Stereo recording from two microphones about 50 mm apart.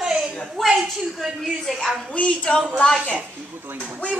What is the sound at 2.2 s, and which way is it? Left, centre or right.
Speech, left.